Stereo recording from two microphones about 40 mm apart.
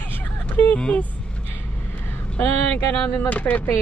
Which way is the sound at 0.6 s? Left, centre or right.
Left.